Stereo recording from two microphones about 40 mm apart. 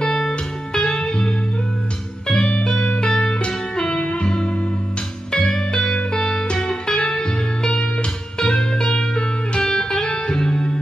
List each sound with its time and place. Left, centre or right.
0.0 s music: left